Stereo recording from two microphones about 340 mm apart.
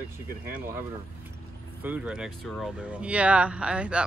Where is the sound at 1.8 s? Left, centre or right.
Centre.